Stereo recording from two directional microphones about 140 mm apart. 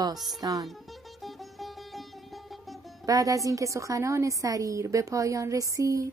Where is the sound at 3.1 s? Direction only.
25° right (ahead or behind).